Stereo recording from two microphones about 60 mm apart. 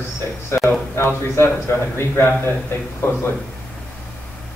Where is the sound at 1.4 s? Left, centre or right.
Left.